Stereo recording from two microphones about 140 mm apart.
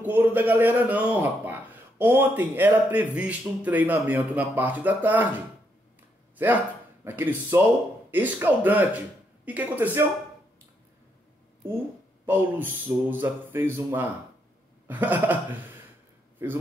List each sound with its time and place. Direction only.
0.0 s a man's voice: 15° right (ahead or behind)
6.3 s a man's voice: 15° right (ahead or behind)
11.6 s a man's voice: 15° right (ahead or behind)
16.4 s a man's voice: 15° right (ahead or behind)